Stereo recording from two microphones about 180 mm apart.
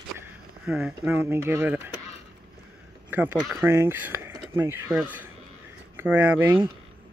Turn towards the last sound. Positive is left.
turn(degrees=-15)  # may be behind; listen again after turning